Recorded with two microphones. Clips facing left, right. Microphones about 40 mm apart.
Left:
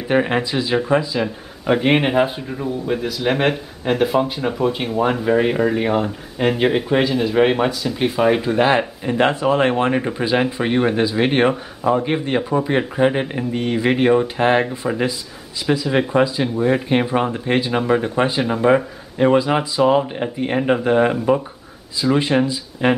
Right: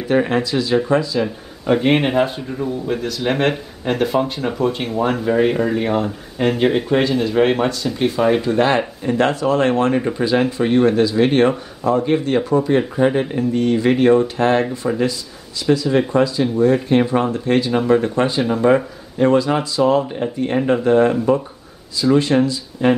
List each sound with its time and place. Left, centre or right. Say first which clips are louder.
0.1 s speech: right 1 dB; left